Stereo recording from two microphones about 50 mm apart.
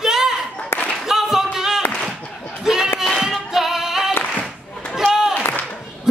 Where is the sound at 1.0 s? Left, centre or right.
Centre.